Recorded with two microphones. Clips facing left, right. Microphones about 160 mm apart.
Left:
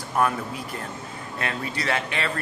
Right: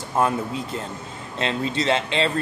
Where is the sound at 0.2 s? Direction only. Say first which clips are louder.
Right 2 dB; 25° right (ahead or behind).